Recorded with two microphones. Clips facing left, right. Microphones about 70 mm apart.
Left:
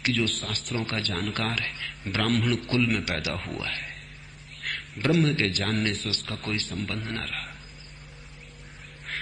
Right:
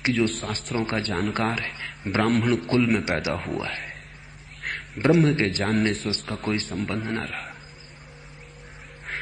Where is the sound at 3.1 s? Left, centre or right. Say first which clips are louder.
Right 5 dB; right.